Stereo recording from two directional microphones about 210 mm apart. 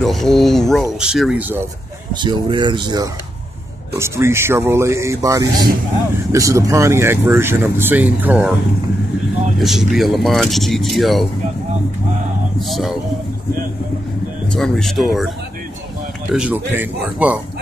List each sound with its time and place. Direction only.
0.0 s speech: centre (ahead or behind)
2.1 s speech: 20° right (ahead or behind)
9.6 s speech: centre (ahead or behind)
12.5 s speech: centre (ahead or behind)
14.5 s speech: centre (ahead or behind)